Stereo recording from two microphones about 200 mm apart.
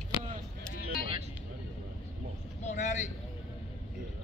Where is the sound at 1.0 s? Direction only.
25° right (ahead or behind).